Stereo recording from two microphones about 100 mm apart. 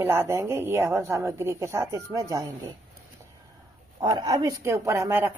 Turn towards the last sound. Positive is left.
turn(degrees=-30)  # may be behind; listen again after turning